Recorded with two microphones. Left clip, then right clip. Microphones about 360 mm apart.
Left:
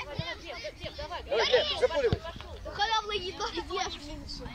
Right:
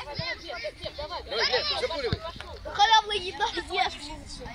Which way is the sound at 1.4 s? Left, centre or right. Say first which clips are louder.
Left 1 dB; left.